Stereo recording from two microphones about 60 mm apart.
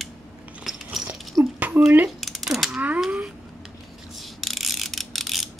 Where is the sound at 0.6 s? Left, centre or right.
Centre.